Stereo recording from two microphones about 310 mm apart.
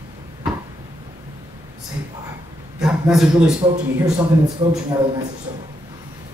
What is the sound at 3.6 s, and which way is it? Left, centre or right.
Speech, centre.